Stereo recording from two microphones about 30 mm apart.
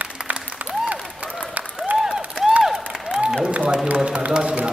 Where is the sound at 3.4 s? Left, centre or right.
Right.